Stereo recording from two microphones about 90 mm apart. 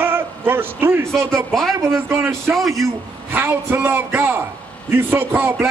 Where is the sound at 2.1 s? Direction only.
30° right (ahead or behind).